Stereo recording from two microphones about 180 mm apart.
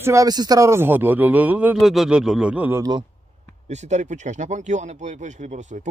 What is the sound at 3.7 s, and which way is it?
Speech, 40° right (ahead or behind).